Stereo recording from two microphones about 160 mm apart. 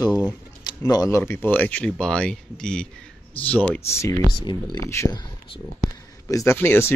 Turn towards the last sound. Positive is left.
turn(degrees=15)  # may be behind; listen again after turning